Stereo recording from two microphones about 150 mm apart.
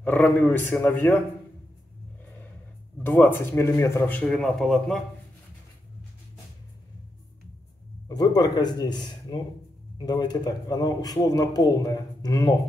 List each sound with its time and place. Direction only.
0.0 s speech: 10° left (ahead or behind)
3.0 s speech: 15° left (ahead or behind)
8.1 s a man's voice: 25° left (ahead or behind)